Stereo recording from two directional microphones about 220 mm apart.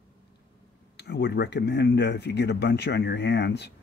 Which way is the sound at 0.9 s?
50° left (ahead or behind).